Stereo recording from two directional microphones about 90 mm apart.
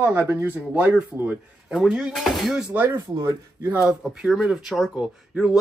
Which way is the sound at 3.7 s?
5° right (ahead or behind).